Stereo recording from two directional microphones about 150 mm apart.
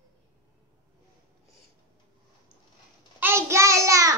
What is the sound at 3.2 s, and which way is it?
Child singing, 15° right (ahead or behind).